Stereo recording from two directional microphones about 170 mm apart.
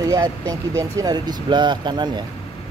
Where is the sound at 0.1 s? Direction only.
20° right (ahead or behind).